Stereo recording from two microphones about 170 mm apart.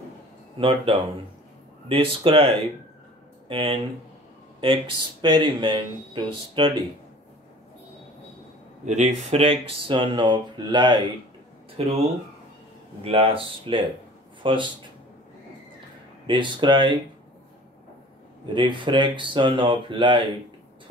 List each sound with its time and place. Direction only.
0.6 s speech: 30° right (ahead or behind)
5.2 s speech: 30° right (ahead or behind)
8.8 s speech: 45° right (ahead or behind); by 11.1 s 25° right (ahead or behind)
11.7 s speech: 35° right (ahead or behind)
16.3 s speech: 30° right (ahead or behind)
18.4 s speech: 30° right (ahead or behind)